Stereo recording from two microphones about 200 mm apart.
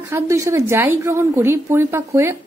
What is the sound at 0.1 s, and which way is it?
A woman's voice, 15° right (ahead or behind).